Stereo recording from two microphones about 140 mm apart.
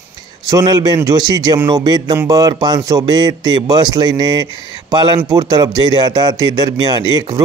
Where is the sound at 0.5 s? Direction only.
25° right (ahead or behind).